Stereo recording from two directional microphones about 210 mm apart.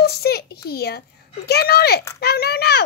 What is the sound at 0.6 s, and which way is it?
A child's voice, 50° left (ahead or behind).